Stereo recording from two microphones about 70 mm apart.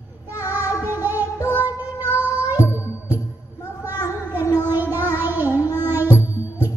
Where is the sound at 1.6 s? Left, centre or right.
Left.